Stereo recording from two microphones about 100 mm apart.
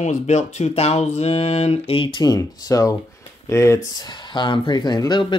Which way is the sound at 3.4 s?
30° left (ahead or behind).